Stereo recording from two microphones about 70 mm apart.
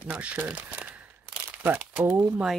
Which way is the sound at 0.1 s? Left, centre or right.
Centre.